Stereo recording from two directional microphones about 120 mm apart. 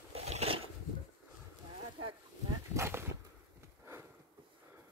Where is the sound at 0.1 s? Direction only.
60° right (ahead or behind).